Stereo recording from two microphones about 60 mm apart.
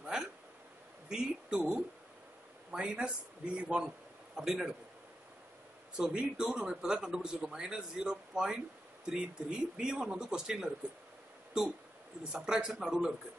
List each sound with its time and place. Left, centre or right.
0.0 s a sound: centre
1.0 s speech: centre
5.9 s speech: centre
12.2 s speech: centre